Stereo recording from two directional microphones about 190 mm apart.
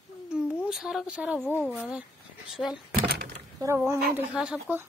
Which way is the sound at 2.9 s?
50° right (ahead or behind).